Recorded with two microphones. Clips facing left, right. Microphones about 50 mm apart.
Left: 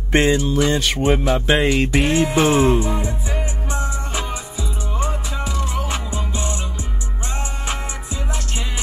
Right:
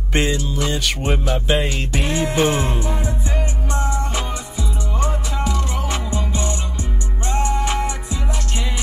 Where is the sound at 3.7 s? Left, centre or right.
Right.